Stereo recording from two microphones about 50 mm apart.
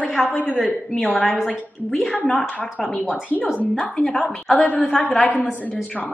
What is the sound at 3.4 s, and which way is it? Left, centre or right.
Speech, left.